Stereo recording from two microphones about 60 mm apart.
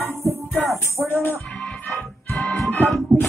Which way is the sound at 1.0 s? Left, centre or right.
Left.